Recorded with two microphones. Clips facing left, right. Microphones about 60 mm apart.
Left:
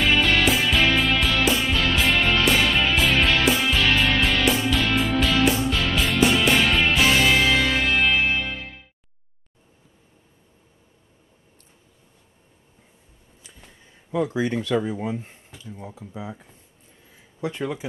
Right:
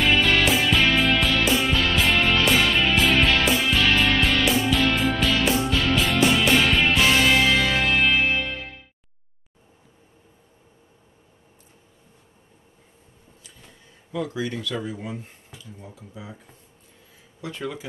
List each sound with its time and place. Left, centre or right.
0.0 s music: centre
14.1 s speech: left
17.4 s speech: left